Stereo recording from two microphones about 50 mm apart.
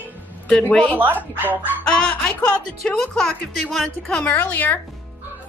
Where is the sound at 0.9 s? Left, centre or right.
Right.